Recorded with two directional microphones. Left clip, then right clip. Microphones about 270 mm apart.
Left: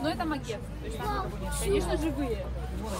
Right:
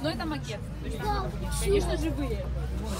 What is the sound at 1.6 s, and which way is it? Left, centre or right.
Speech, centre.